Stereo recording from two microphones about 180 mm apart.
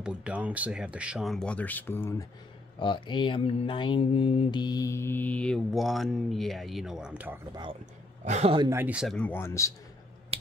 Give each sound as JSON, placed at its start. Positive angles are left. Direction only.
{"t": 0.0, "sound": "speech", "side_deg": -5}
{"t": 2.8, "sound": "mantra", "side_deg": 25}
{"t": 8.3, "sound": "speech", "side_deg": -35}
{"t": 8.6, "sound": "speech", "side_deg": -10}
{"t": 9.1, "sound": "mantra", "side_deg": 10}
{"t": 10.3, "sound": "finger snapping", "side_deg": -35}